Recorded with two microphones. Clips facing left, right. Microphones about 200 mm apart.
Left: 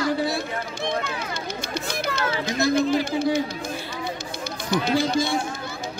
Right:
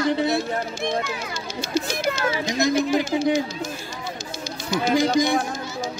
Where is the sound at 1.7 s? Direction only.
55° left (ahead or behind).